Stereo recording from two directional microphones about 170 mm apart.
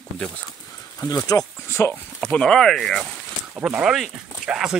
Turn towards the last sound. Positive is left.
turn(degrees=-5)  # may be behind; listen again after turning